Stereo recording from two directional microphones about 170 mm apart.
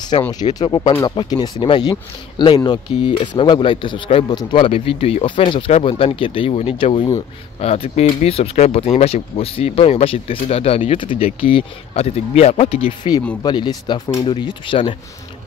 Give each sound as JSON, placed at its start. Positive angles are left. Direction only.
{"t": 0.3, "sound": "speech", "side_deg": 25}